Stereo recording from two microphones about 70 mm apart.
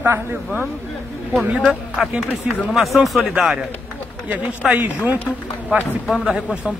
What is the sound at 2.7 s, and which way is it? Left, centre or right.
Speech, centre.